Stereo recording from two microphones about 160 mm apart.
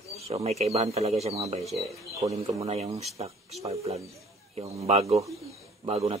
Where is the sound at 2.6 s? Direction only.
40° right (ahead or behind).